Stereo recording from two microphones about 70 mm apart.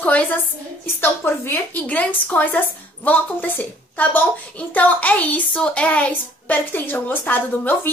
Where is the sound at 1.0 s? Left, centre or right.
Left.